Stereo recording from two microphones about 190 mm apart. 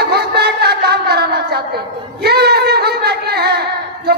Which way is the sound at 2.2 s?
55° right (ahead or behind).